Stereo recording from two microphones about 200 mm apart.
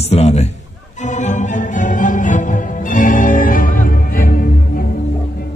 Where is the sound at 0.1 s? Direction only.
35° left (ahead or behind).